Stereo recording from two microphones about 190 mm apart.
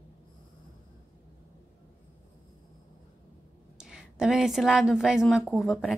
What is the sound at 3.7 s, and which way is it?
A woman's voice, 5° right (ahead or behind).